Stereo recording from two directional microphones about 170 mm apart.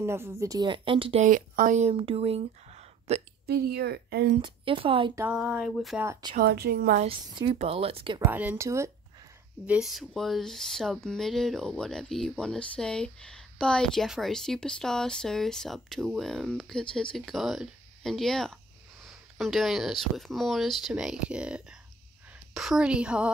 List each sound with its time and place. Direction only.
0.0 s speech: 15° right (ahead or behind); by 1.2 s 30° right (ahead or behind)
1.2 s speech: 50° right (ahead or behind)
3.4 s a woman's voice: 70° right (ahead or behind)
4.4 s a woman's voice: 30° right (ahead or behind)
5.1 s speech: 10° right (ahead or behind)
6.3 s a woman's voice: 70° right (ahead or behind)
7.0 s a woman's voice: 30° right (ahead or behind)
8.2 s a woman's voice: 10° right (ahead or behind)
9.7 s speech: centre (ahead or behind)